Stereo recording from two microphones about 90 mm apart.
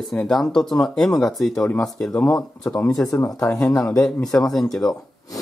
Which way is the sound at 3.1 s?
30° left (ahead or behind).